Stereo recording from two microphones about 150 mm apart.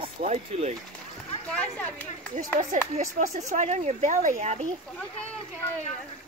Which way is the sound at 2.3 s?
55° right (ahead or behind).